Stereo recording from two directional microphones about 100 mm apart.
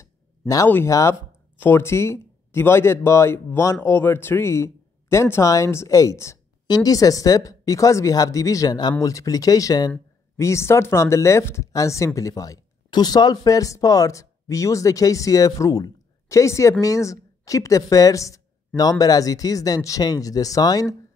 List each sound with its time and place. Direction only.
0.0 s a sound: 35° left (ahead or behind)
0.8 s speech: 30° left (ahead or behind)
10.3 s a woman's voice: 30° left (ahead or behind)